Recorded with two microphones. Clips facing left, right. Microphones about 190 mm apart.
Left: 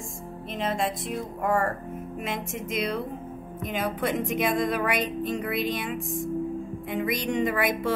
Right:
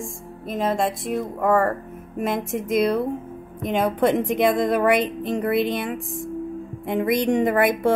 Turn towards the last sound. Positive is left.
turn(degrees=-55)  # may be behind; listen again after turning